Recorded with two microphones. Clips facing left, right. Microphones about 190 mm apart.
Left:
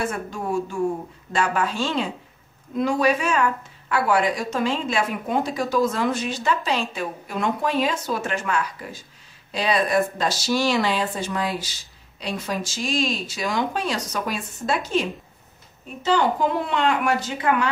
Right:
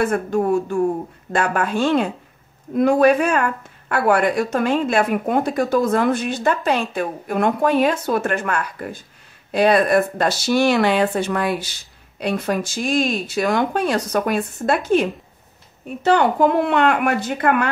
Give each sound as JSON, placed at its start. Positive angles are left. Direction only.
{"t": 0.0, "sound": "speech", "side_deg": -55}